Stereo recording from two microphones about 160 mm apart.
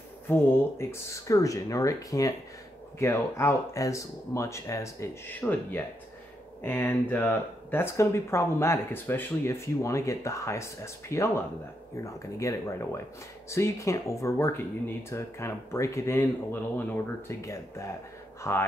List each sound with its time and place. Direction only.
0.3 s speech: 15° left (ahead or behind)